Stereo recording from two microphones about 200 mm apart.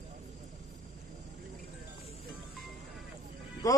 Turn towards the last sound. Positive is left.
turn(degrees=15)  # may be behind; listen again after turning